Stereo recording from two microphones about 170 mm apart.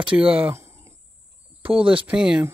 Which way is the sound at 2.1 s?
5° right (ahead or behind).